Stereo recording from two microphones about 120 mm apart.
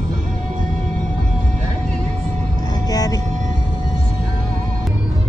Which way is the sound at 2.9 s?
30° left (ahead or behind).